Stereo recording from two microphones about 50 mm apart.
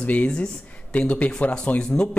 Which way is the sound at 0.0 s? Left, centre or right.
Left.